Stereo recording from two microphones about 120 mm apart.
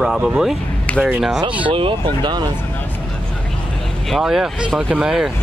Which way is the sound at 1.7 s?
45° right (ahead or behind).